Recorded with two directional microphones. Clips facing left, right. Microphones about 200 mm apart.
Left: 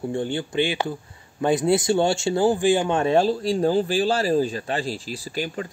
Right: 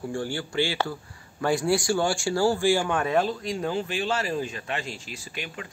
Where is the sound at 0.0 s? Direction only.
20° left (ahead or behind).